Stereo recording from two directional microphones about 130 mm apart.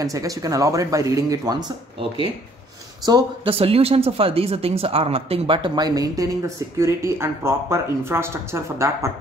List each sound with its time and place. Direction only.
0.0 s speech: 25° right (ahead or behind)
3.4 s speech: 50° right (ahead or behind); by 9.1 s 20° right (ahead or behind)